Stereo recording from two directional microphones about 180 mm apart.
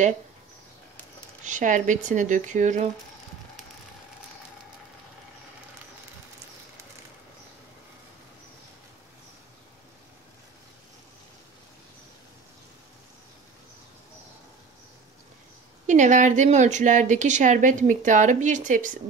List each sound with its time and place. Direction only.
1.4 s a woman's voice: 45° right (ahead or behind)
15.9 s a woman's voice: 45° right (ahead or behind)